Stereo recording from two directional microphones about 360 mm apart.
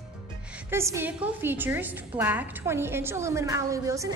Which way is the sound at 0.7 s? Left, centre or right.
Centre.